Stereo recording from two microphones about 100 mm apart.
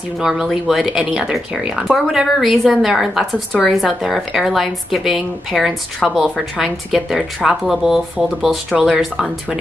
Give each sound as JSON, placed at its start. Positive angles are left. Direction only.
{"t": 0.2, "sound": "speech", "side_deg": -5}